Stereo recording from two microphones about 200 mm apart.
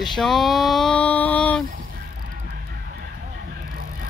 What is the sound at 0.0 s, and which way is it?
Speech, centre (ahead or behind).